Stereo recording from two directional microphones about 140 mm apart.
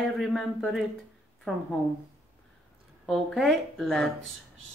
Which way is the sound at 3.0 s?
Centre (ahead or behind).